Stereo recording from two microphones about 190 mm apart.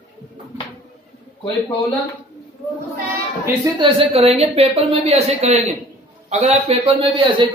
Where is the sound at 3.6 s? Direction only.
30° right (ahead or behind).